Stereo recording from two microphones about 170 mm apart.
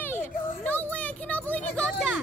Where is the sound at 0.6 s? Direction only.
10° left (ahead or behind).